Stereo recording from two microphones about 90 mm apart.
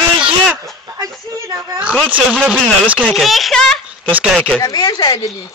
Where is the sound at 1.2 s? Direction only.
35° right (ahead or behind).